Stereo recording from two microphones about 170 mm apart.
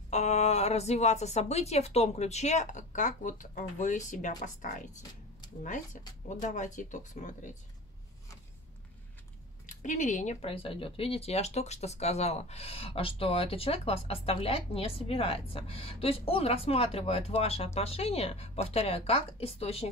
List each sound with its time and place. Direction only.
0.1 s speech: 40° left (ahead or behind)
6.2 s speech: 45° left (ahead or behind)
9.7 s speech: 45° left (ahead or behind)